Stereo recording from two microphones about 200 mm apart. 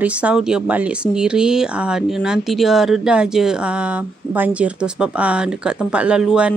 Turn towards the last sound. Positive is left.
turn(degrees=-5)  # may be behind; listen again after turning